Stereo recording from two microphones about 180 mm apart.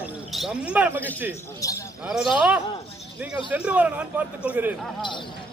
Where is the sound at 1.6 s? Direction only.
20° left (ahead or behind).